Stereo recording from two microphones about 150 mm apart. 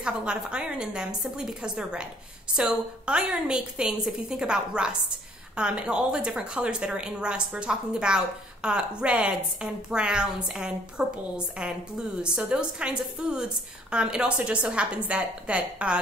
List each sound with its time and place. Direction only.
0.0 s a woman's voice: 5° right (ahead or behind)